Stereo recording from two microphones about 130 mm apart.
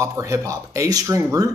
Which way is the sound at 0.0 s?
25° right (ahead or behind).